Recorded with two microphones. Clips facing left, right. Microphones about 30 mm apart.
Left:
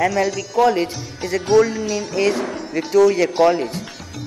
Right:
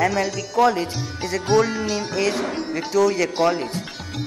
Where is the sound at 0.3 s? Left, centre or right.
Centre.